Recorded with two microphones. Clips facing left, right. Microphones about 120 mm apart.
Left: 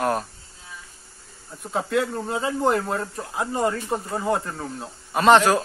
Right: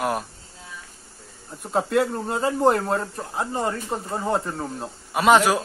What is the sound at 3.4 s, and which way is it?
Speech, 30° right (ahead or behind).